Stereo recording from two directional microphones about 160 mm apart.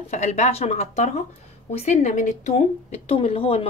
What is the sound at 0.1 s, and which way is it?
Speech, 45° left (ahead or behind).